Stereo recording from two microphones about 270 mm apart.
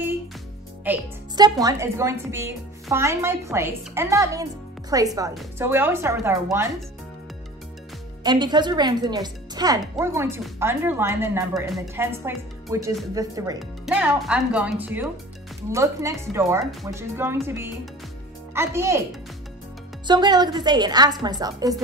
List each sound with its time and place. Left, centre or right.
0.8 s a woman's voice: centre
8.2 s a woman's voice: centre
18.5 s a woman's voice: centre
20.1 s a woman's voice: centre